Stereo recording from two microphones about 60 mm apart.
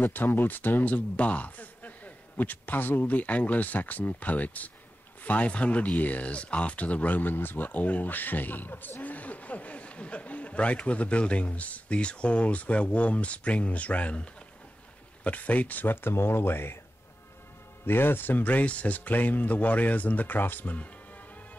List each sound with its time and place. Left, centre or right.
0.0 s speech: left
17.8 s speech: left